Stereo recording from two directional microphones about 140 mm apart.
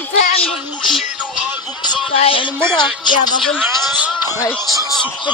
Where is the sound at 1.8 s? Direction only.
40° left (ahead or behind).